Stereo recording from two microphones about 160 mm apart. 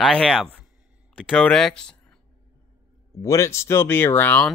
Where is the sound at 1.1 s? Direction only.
5° left (ahead or behind).